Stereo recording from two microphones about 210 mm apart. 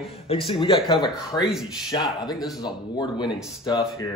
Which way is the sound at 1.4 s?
Centre (ahead or behind).